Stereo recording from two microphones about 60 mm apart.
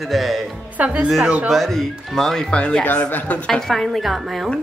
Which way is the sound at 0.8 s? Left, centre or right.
Right.